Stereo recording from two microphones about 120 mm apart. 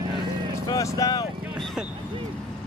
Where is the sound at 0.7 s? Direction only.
30° left (ahead or behind).